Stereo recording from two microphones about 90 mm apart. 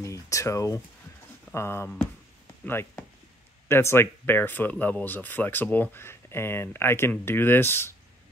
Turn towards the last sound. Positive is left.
turn(degrees=25)  # may be behind; listen again after turning